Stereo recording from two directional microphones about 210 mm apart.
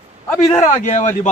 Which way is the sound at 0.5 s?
35° left (ahead or behind).